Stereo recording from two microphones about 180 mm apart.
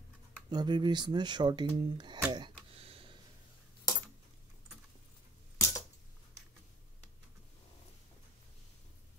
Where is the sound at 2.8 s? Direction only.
30° right (ahead or behind).